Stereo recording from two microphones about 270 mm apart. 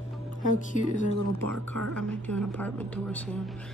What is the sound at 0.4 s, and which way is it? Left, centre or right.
Speech, left.